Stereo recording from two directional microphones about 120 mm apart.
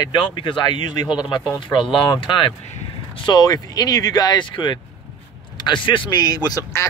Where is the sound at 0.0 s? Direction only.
40° left (ahead or behind).